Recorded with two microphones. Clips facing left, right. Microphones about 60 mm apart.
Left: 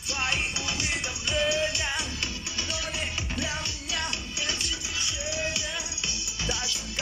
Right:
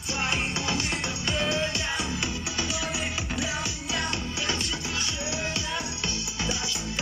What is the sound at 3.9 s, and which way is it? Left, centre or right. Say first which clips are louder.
Music: right 2 dB; right.